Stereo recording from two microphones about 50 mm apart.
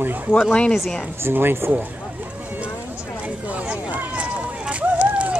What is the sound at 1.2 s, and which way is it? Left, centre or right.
Speech, right.